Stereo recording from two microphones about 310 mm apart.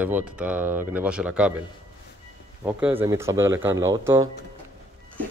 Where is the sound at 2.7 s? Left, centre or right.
Centre.